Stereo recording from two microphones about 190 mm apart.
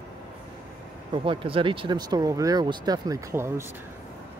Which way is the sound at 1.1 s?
25° right (ahead or behind).